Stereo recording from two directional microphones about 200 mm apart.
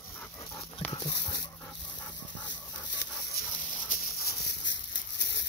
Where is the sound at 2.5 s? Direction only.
60° left (ahead or behind).